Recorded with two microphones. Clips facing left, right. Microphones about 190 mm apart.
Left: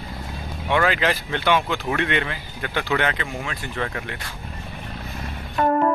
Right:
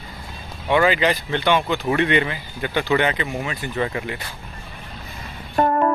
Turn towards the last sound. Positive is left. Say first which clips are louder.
# right 2 dB
turn(degrees=-45)  # may be behind; listen again after turning